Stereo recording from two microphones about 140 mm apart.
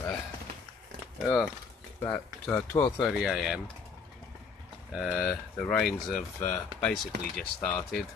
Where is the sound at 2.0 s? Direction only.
10° left (ahead or behind).